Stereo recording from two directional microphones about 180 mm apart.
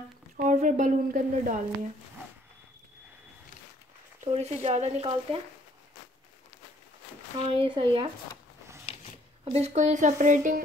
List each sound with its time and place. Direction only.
0.4 s a woman's voice: 45° right (ahead or behind)
4.2 s speech: 35° right (ahead or behind)
7.3 s speech: 25° right (ahead or behind)
9.4 s a woman's voice: 35° right (ahead or behind)